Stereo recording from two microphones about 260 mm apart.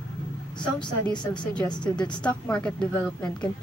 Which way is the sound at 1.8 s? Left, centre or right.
Centre.